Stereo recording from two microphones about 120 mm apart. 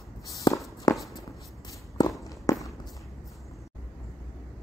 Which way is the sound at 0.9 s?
30° left (ahead or behind).